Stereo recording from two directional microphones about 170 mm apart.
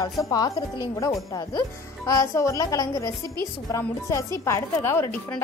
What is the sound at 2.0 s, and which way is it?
Speech, 20° left (ahead or behind).